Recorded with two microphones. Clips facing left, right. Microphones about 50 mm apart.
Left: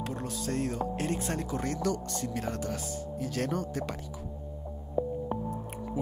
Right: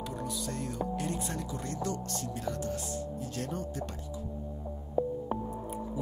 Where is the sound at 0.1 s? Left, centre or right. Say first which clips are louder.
Left 3 dB; left.